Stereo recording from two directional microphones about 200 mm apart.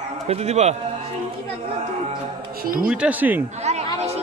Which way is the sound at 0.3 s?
35° right (ahead or behind).